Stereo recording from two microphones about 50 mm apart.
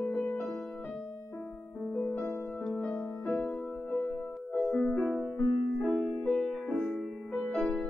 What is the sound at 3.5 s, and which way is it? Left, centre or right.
Music, left.